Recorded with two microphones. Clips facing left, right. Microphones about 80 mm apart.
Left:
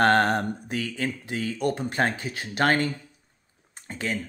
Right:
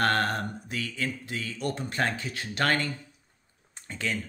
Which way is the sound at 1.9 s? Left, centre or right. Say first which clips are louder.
Left 4 dB; left.